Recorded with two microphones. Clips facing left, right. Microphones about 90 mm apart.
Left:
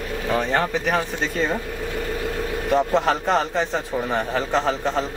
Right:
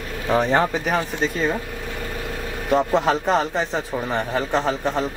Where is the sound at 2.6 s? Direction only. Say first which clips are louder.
Right 1 dB; 10° right (ahead or behind).